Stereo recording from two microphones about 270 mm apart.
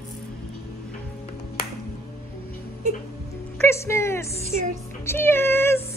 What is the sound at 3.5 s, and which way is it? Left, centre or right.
Speech, centre.